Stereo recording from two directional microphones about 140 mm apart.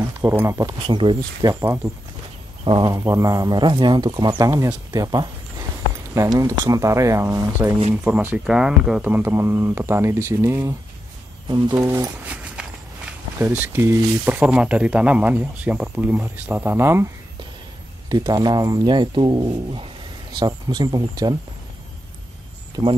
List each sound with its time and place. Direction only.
0.2 s speech: 15° right (ahead or behind)
0.8 s speech: 35° right (ahead or behind)
1.5 s speech: 20° right (ahead or behind)
2.6 s speech: 35° right (ahead or behind)
2.9 s speech: 25° right (ahead or behind)
7.9 s speech: 10° right (ahead or behind)
12.3 s speech: 10° right (ahead or behind)
18.0 s speech: 30° right (ahead or behind)